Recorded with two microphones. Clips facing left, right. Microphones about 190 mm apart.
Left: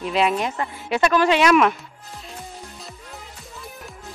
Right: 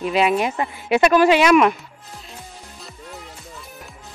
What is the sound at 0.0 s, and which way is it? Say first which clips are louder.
Speech: right 3 dB; 5° right (ahead or behind).